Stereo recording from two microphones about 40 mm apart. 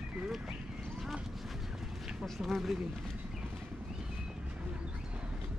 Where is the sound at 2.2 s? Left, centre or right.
Centre.